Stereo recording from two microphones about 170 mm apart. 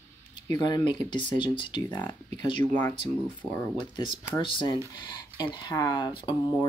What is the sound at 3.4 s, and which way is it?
Speech, 15° left (ahead or behind).